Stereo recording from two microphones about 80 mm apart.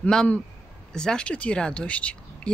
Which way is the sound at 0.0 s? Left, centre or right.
Centre.